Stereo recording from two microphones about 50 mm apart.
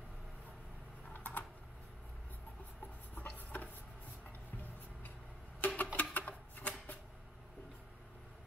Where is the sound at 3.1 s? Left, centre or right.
Left.